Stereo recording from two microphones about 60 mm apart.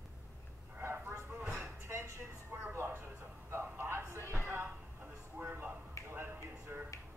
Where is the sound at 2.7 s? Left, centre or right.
Right.